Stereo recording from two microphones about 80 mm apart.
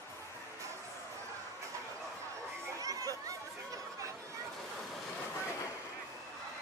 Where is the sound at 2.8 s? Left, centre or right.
Right.